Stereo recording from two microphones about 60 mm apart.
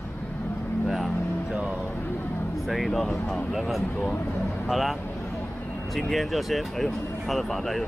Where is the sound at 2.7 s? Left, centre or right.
Centre.